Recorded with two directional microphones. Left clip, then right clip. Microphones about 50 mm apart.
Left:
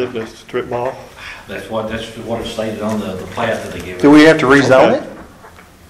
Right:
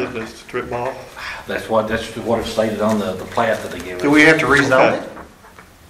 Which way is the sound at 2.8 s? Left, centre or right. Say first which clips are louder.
Right 2 dB; right.